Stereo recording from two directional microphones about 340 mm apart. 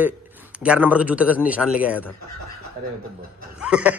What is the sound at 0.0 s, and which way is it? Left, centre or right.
Speech, centre.